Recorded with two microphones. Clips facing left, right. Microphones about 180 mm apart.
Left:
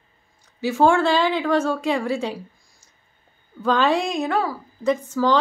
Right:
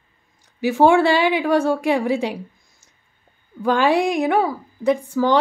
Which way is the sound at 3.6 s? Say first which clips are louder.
Right 3 dB; 10° right (ahead or behind).